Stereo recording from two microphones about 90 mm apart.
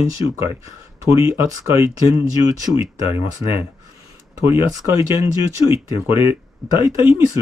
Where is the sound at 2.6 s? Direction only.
40° right (ahead or behind).